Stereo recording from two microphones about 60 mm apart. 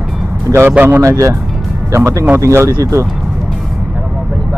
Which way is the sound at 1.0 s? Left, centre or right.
Right.